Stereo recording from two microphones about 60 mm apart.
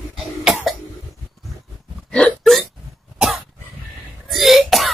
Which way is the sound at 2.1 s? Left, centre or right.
Centre.